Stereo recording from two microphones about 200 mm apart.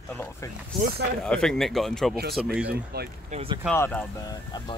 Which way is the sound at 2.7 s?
50° right (ahead or behind).